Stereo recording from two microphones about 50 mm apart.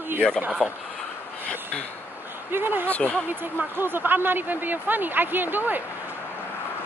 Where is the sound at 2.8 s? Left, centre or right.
Left.